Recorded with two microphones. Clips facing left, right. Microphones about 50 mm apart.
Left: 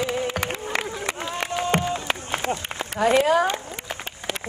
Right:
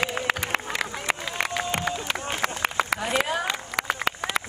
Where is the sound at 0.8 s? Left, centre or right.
Right.